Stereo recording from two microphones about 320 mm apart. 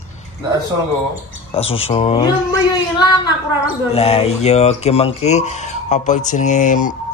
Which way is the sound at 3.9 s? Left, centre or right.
Centre.